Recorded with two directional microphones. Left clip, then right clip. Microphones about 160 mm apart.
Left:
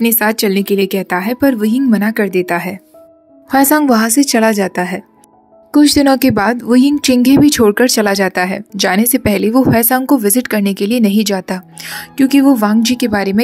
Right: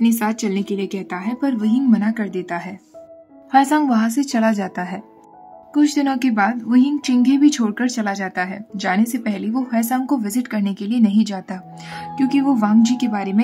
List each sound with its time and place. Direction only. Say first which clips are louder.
0.0 s a woman's voice: left 7 dB; 35° left (ahead or behind)
5.9 s speech: left 9 dB; 45° left (ahead or behind)